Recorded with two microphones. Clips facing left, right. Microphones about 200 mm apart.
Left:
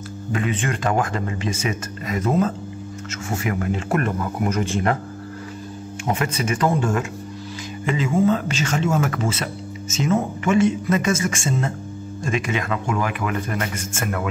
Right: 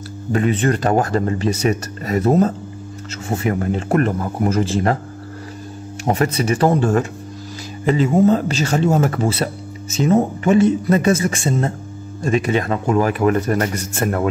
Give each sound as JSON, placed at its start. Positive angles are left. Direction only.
{"t": 0.3, "sound": "speech", "side_deg": -40}
{"t": 6.0, "sound": "speech", "side_deg": -40}